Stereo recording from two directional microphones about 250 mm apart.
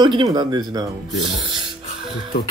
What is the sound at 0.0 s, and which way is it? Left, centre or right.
Speech, centre.